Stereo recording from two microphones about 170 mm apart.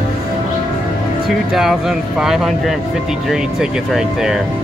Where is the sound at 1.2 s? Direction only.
Centre (ahead or behind).